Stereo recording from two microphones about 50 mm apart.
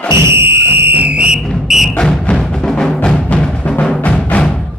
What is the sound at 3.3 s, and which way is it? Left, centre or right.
Music, left.